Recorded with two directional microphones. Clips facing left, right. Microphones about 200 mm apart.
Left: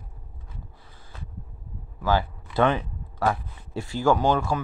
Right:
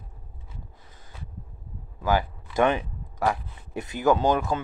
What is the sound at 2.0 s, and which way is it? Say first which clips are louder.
Speech: even; 15° right (ahead or behind).